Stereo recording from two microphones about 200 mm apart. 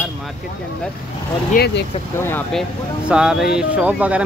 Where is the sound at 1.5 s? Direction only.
45° left (ahead or behind).